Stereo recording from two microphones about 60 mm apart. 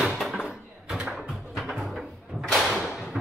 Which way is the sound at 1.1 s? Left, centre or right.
Centre.